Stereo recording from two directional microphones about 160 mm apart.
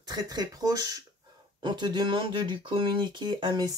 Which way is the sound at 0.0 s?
25° right (ahead or behind).